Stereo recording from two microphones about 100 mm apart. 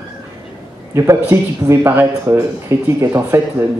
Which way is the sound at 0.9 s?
25° right (ahead or behind).